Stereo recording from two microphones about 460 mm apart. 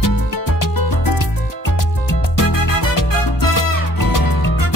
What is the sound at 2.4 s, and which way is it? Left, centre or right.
Music, left.